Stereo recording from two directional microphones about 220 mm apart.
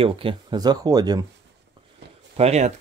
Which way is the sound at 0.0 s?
25° right (ahead or behind).